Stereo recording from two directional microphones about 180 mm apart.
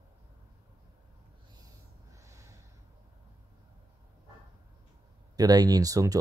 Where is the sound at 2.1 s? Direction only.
15° right (ahead or behind).